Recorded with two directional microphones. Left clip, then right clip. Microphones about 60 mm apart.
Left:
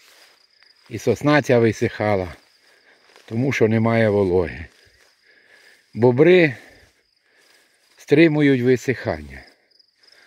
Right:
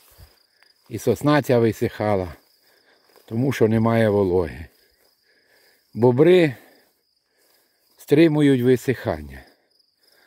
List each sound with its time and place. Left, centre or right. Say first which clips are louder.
0.8 s speech: left 1 dB; right
1.2 s speech: left 2 dB; centre
1.9 s speech: left 1 dB; right
3.4 s speech: left 1 dB; right
4.3 s speech: left 2 dB; centre
5.9 s speech: left 1 dB; centre
8.0 s speech: left 1 dB; centre
8.4 s speech: left 1 dB; right
8.6 s speech: even; right